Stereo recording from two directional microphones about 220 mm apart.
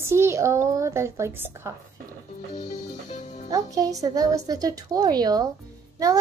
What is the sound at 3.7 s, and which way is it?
A woman's voice, 15° right (ahead or behind).